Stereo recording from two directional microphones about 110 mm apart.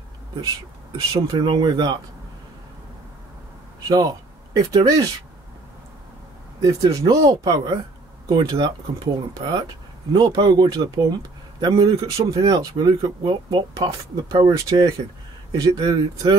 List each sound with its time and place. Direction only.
1.1 s speech: 40° right (ahead or behind)
3.8 s speech: 40° right (ahead or behind)
6.6 s speech: 35° right (ahead or behind)